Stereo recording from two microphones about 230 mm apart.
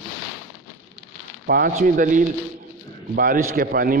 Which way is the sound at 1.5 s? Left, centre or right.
Right.